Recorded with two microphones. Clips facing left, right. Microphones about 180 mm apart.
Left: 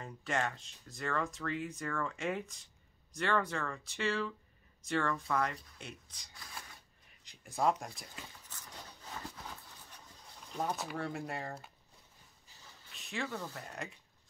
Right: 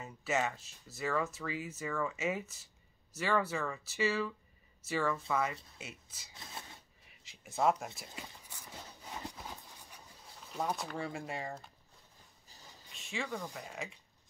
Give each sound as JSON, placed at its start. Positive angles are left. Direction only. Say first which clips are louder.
{"t": 0.0, "sound": "speech", "louder": "right 2 dB", "side_deg": -5}
{"t": 6.3, "sound": "a sound", "louder": "right 2 dB", "side_deg": -25}
{"t": 7.2, "sound": "speech", "louder": "right 1 dB", "side_deg": 0}
{"t": 10.5, "sound": "speech", "louder": "even", "side_deg": -5}
{"t": 12.9, "sound": "speech", "louder": "even", "side_deg": 0}
{"t": 13.3, "sound": "speech", "louder": "right 1 dB", "side_deg": -15}
{"t": 13.6, "sound": "speech", "louder": "right 1 dB", "side_deg": 0}